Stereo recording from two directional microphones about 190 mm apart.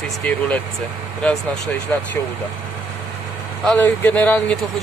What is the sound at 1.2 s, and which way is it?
Speech, 5° left (ahead or behind).